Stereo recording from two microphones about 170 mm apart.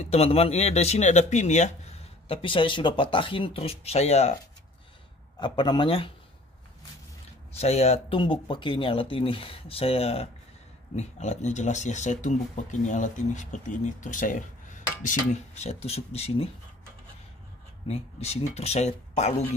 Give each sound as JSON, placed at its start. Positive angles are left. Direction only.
{"t": 0.0, "sound": "speech", "side_deg": 35}
{"t": 5.4, "sound": "a man's voice", "side_deg": 25}
{"t": 7.5, "sound": "speech", "side_deg": 40}
{"t": 17.8, "sound": "speech", "side_deg": 40}